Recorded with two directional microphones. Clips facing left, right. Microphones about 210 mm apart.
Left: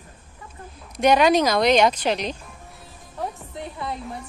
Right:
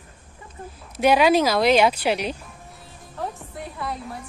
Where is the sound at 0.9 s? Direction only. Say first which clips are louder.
Even; 5° right (ahead or behind).